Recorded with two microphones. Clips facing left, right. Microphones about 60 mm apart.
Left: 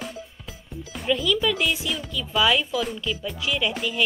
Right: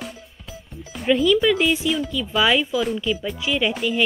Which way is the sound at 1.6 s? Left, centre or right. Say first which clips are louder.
Right 5 dB; centre.